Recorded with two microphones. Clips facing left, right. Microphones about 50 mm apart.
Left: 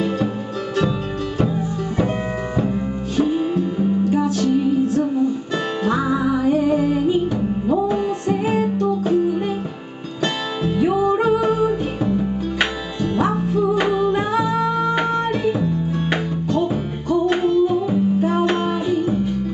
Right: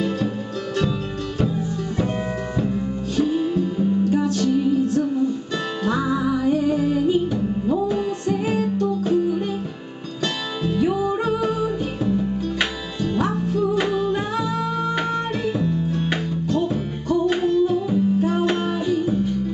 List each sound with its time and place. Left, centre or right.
1.4 s music: centre